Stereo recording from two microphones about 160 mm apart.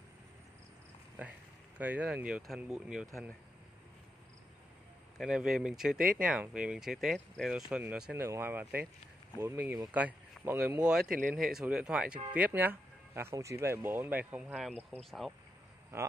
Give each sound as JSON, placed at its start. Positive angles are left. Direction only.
{"t": 1.8, "sound": "speech", "side_deg": -10}
{"t": 5.1, "sound": "speech", "side_deg": 0}
{"t": 5.9, "sound": "speech", "side_deg": -60}
{"t": 6.2, "sound": "speech", "side_deg": -5}
{"t": 11.1, "sound": "speech", "side_deg": -60}
{"t": 11.5, "sound": "speech", "side_deg": -5}